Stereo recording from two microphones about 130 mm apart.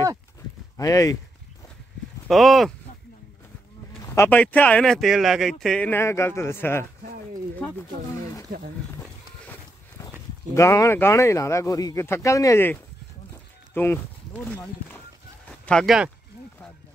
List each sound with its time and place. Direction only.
0.7 s speech: 25° left (ahead or behind)
2.2 s speech: centre (ahead or behind)
4.0 s speech: 20° left (ahead or behind); by 5.9 s 5° left (ahead or behind)
5.9 s speech: 20° left (ahead or behind)
7.6 s speech: 10° left (ahead or behind)
10.5 s speech: 25° left (ahead or behind)
13.3 s a sound: 20° left (ahead or behind)
14.9 s livestock: 10° left (ahead or behind)